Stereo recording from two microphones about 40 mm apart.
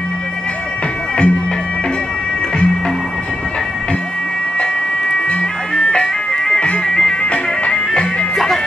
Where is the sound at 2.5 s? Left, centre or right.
Centre.